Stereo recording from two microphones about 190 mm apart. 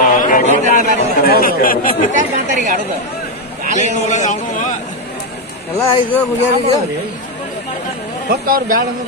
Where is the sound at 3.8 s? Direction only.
40° left (ahead or behind).